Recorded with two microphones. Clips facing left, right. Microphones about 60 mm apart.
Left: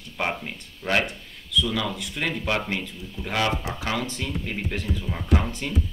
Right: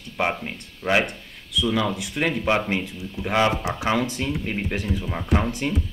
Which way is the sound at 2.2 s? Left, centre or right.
Centre.